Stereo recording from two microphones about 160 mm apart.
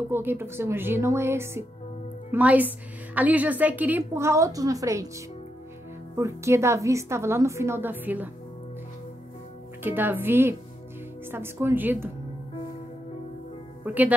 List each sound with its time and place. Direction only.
0.1 s a woman's voice: 15° right (ahead or behind)
6.1 s a woman's voice: 20° right (ahead or behind)
9.8 s a woman's voice: 10° right (ahead or behind)
13.8 s speech: 10° right (ahead or behind)